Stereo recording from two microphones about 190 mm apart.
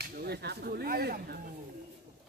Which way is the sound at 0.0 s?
60° right (ahead or behind).